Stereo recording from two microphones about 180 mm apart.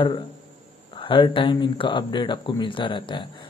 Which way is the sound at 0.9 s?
30° left (ahead or behind).